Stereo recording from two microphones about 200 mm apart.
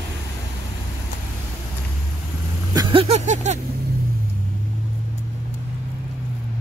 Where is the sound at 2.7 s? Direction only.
30° right (ahead or behind).